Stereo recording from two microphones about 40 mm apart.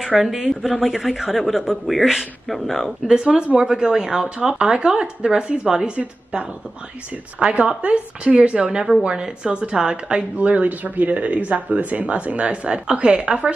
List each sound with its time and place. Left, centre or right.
0.0 s a man's voice: centre
3.1 s speech: right
7.3 s speech: right
8.6 s speech: centre
10.3 s speech: right